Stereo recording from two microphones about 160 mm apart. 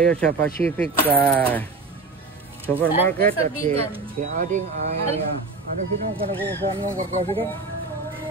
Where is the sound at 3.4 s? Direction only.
45° right (ahead or behind).